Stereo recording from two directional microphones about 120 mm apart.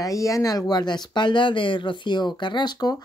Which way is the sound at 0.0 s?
25° left (ahead or behind).